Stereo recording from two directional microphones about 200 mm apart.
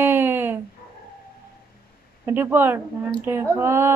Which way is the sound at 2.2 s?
10° right (ahead or behind).